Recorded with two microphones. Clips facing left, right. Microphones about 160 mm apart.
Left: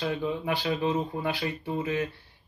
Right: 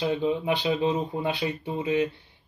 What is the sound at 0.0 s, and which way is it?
Speech, 20° right (ahead or behind).